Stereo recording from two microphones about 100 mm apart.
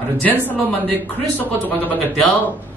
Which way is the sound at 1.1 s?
15° left (ahead or behind).